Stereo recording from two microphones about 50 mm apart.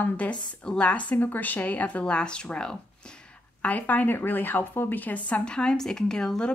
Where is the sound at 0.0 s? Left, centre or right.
Left.